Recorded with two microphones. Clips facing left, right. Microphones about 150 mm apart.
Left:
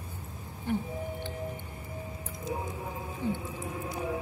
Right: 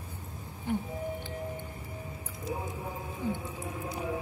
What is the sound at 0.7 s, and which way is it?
Music, 15° right (ahead or behind).